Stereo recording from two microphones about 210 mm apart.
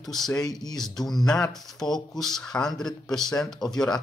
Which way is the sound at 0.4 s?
20° left (ahead or behind).